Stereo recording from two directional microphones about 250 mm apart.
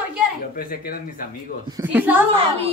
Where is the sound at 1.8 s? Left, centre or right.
Centre.